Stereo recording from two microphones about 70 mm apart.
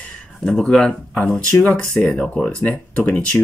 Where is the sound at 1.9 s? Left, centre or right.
Centre.